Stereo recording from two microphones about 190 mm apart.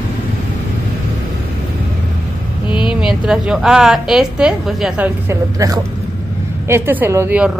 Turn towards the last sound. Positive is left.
turn(degrees=-10)  # may be behind; listen again after turning